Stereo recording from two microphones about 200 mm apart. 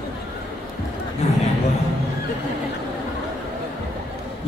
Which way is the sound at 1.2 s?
35° left (ahead or behind).